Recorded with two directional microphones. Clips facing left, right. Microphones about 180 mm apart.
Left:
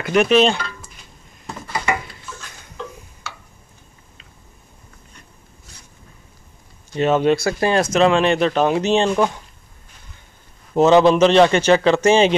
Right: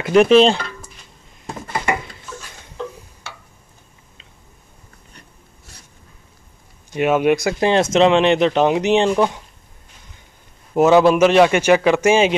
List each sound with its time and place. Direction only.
0.1 s speech: 30° right (ahead or behind)
6.9 s speech: 10° right (ahead or behind)
10.7 s speech: 10° right (ahead or behind)